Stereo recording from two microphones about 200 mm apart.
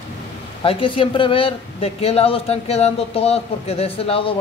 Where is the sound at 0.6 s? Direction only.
25° left (ahead or behind).